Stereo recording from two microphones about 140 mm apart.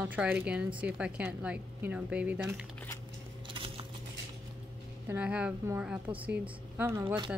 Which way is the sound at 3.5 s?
40° right (ahead or behind).